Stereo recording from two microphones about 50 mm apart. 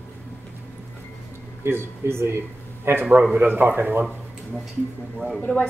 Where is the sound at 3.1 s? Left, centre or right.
Right.